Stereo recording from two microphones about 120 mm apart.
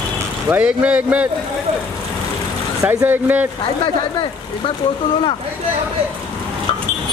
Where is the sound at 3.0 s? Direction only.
15° right (ahead or behind).